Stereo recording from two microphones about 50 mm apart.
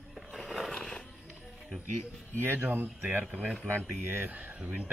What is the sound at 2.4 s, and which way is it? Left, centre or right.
Speech, right.